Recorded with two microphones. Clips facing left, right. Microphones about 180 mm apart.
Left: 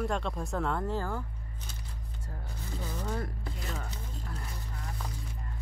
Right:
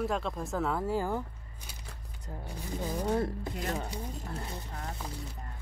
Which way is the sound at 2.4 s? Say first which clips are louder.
Right 5 dB; 15° right (ahead or behind).